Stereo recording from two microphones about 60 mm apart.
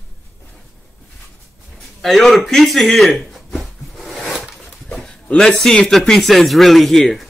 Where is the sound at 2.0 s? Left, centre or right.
Centre.